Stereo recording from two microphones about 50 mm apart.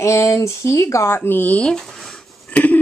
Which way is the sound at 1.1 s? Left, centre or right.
Left.